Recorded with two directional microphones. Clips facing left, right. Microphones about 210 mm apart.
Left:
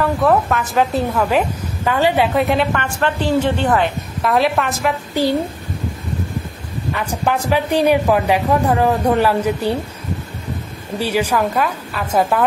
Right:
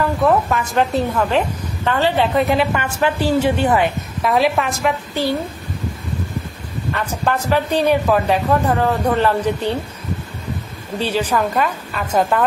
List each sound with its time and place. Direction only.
0.0 s a woman's voice: centre (ahead or behind)
6.9 s speech: 10° left (ahead or behind)
11.0 s a woman's voice: 10° left (ahead or behind)